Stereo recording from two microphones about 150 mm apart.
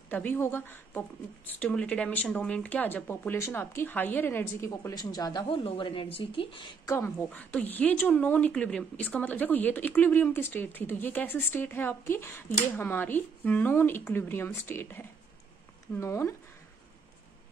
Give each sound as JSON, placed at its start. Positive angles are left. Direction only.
{"t": 0.1, "sound": "a woman's voice", "side_deg": 15}
{"t": 6.9, "sound": "a woman's voice", "side_deg": 15}